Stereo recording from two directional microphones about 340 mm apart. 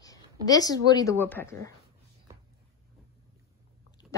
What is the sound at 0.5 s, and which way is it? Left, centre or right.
Speech, centre.